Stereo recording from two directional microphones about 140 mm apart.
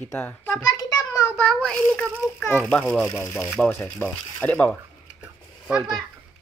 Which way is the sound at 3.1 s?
20° left (ahead or behind).